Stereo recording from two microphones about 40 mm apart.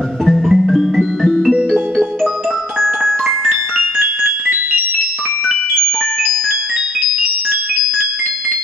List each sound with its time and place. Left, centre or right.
0.2 s music: centre
1.5 s music: centre
2.8 s music: centre
5.5 s music: centre